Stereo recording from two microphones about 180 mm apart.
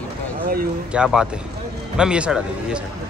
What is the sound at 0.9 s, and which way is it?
A man's voice, 5° right (ahead or behind).